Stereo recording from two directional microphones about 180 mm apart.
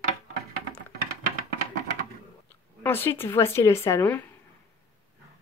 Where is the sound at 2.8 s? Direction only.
10° left (ahead or behind).